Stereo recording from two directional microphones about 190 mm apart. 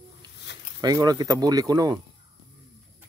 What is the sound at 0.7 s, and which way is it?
Speech, 20° right (ahead or behind).